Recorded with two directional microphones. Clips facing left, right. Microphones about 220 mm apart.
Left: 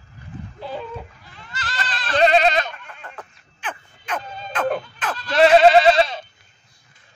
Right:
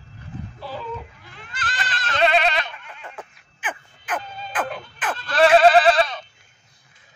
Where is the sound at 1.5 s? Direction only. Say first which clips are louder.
Left 1 dB; 50° right (ahead or behind).